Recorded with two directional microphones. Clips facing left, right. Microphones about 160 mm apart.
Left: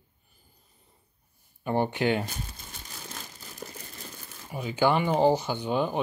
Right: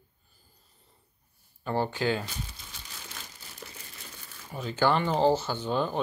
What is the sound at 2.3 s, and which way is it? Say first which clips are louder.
Crumpling: left 1 dB; 50° left (ahead or behind).